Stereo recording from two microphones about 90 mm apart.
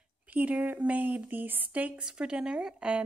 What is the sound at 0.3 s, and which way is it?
Speech, 15° right (ahead or behind).